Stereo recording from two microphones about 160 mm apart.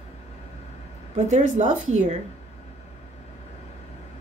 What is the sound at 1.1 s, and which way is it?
Speech, 45° right (ahead or behind).